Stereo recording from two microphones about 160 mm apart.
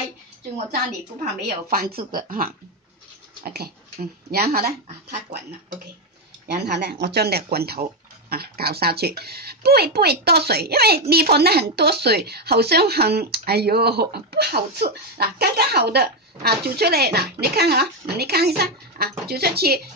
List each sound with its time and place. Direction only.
1.7 s speech: 70° right (ahead or behind)
2.1 s speech: 60° right (ahead or behind)
3.4 s speech: 75° right (ahead or behind)
6.4 s speech: 80° right